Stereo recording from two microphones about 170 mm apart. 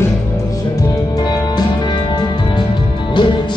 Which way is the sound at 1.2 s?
25° left (ahead or behind).